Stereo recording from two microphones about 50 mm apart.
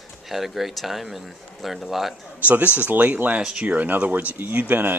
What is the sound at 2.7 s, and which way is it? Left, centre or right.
Speech, right.